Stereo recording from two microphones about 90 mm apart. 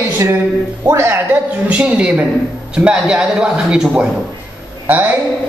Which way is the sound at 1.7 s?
15° right (ahead or behind).